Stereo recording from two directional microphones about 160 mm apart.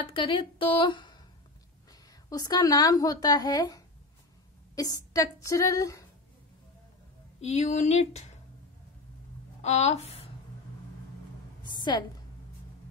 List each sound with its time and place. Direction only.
0.0 s a woman's voice: 35° left (ahead or behind)
7.3 s speech: 45° left (ahead or behind)
9.6 s a woman's voice: 45° left (ahead or behind)
11.9 s speech: 25° left (ahead or behind)